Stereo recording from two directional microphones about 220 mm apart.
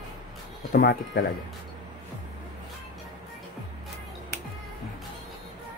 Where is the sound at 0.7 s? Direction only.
45° left (ahead or behind).